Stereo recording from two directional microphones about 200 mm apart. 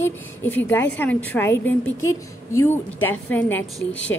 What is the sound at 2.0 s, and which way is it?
Speech, 90° left.